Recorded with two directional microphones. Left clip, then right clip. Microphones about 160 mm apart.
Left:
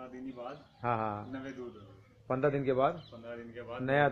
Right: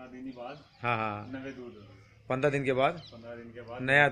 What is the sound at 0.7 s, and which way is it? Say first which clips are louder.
A man's voice: right 2 dB; 10° right (ahead or behind).